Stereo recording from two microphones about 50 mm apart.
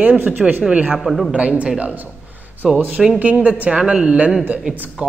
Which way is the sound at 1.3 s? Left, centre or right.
Right.